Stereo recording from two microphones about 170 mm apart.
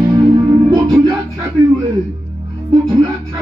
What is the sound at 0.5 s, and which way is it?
Music, 25° right (ahead or behind).